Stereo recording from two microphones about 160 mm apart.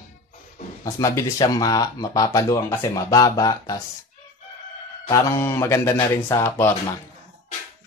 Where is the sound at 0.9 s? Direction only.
20° left (ahead or behind).